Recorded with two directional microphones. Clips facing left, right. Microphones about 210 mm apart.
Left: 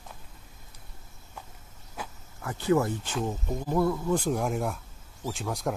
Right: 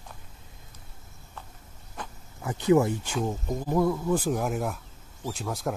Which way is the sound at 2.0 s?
10° left (ahead or behind).